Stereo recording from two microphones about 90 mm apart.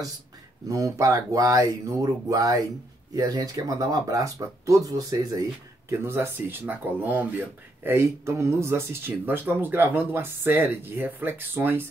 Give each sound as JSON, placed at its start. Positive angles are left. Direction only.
{"t": 0.7, "sound": "speech", "side_deg": -35}
{"t": 5.9, "sound": "speech", "side_deg": -30}